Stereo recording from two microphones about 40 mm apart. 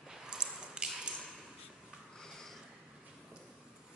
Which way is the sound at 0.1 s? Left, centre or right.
Right.